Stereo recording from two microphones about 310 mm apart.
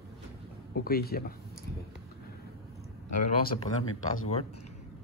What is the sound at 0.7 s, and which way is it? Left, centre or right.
Speech, left.